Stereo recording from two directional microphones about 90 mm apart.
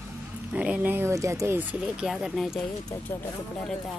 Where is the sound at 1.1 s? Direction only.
35° right (ahead or behind).